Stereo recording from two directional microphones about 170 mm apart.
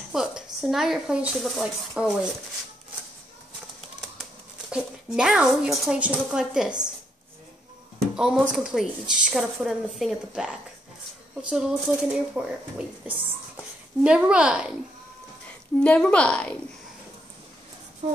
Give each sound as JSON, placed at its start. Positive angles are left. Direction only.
{"t": 0.1, "sound": "speech", "side_deg": -5}
{"t": 4.6, "sound": "speech", "side_deg": -5}
{"t": 8.2, "sound": "speech", "side_deg": -5}
{"t": 15.8, "sound": "a woman's voice", "side_deg": 5}
{"t": 18.0, "sound": "speech", "side_deg": -40}